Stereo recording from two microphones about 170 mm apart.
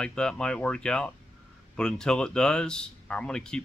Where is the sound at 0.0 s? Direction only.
5° left (ahead or behind).